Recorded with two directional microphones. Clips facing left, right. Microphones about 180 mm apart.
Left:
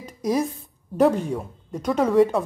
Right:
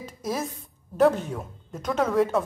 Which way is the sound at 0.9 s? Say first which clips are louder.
Left 2 dB; centre (ahead or behind).